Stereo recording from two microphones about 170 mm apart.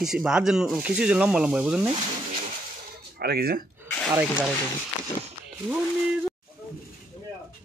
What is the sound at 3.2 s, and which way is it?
Speech, 65° right (ahead or behind).